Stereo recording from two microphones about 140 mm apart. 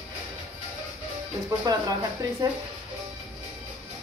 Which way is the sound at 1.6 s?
25° right (ahead or behind).